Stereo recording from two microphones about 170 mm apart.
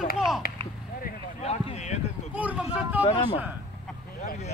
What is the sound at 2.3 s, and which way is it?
Speech, 10° right (ahead or behind).